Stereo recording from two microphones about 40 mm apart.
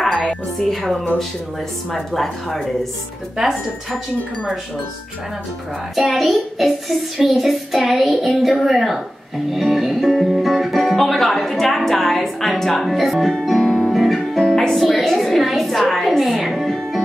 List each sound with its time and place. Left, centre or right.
0.7 s speech: centre
3.3 s speech: centre
5.9 s speech: centre
13.5 s music: centre
14.5 s music: centre
14.8 s a woman's voice: centre